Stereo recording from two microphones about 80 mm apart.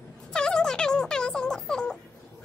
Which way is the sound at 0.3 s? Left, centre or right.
Centre.